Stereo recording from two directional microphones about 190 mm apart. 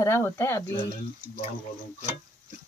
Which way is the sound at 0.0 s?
15° left (ahead or behind).